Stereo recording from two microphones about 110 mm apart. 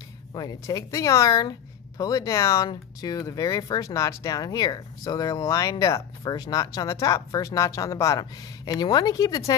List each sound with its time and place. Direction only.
0.3 s speech: 35° left (ahead or behind)